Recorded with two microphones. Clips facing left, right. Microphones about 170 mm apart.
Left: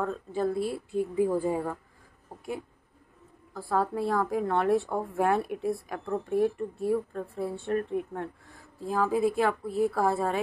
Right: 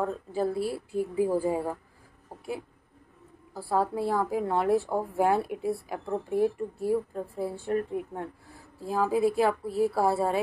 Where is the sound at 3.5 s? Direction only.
10° right (ahead or behind).